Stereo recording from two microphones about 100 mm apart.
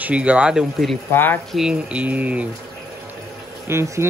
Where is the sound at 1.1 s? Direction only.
20° left (ahead or behind).